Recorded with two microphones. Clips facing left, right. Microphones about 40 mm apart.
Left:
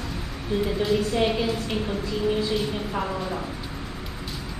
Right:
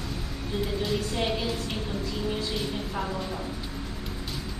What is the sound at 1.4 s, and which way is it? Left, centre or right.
A woman's voice, centre.